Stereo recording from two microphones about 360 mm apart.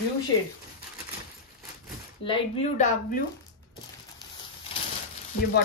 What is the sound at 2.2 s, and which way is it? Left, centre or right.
Speech, centre.